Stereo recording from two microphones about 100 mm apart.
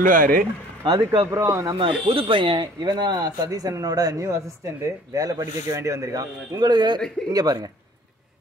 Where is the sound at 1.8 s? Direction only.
70° right (ahead or behind).